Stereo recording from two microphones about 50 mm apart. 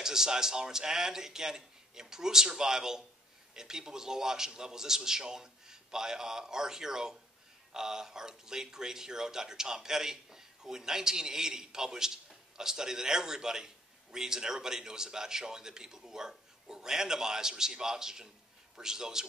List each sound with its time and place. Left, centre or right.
0.0 s speech: centre